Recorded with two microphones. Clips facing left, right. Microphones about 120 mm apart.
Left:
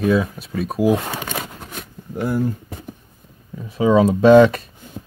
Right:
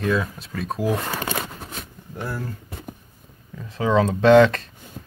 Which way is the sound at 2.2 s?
15° left (ahead or behind).